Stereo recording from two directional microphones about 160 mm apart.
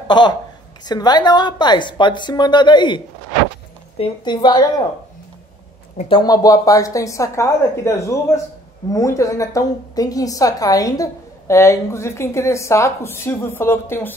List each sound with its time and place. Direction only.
0.1 s a woman's voice: 30° left (ahead or behind)
4.0 s a woman's voice: 30° left (ahead or behind)
6.0 s a woman's voice: 25° left (ahead or behind)